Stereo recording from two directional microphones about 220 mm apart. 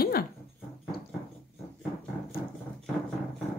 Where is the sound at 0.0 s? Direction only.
45° left (ahead or behind).